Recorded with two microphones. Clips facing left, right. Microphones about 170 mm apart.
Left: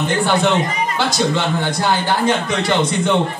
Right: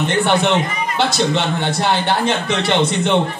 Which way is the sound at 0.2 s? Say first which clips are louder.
Even; 25° right (ahead or behind).